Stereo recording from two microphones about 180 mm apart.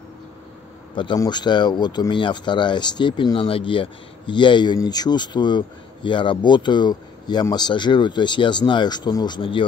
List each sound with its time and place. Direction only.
0.9 s speech: 25° left (ahead or behind)